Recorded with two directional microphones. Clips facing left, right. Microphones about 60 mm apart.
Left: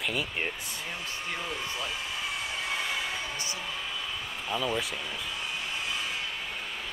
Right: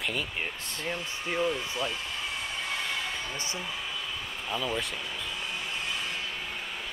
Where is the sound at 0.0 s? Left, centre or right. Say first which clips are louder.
Left 1 dB; centre.